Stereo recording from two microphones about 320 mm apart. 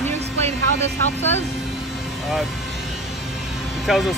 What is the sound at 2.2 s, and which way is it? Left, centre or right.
Vehicle, centre.